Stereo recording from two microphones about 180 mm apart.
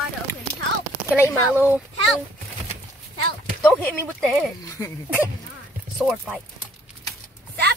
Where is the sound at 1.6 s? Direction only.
10° right (ahead or behind).